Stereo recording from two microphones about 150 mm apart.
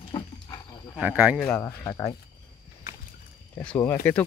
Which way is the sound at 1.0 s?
10° right (ahead or behind).